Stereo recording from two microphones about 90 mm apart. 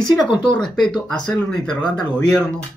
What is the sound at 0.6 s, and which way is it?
Speech, 55° left (ahead or behind).